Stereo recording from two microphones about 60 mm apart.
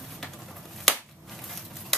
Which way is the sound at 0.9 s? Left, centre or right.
Centre.